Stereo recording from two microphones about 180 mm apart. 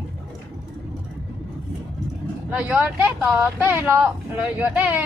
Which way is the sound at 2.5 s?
10° right (ahead or behind).